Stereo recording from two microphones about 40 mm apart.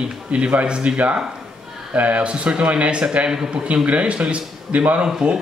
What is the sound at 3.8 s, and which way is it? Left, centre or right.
Speech, right.